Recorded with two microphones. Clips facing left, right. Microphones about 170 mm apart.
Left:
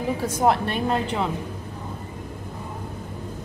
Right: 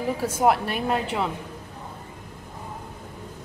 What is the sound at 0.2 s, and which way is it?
A woman's voice, 5° right (ahead or behind).